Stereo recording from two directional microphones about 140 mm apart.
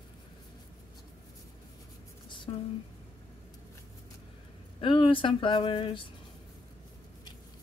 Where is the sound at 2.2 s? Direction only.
35° left (ahead or behind).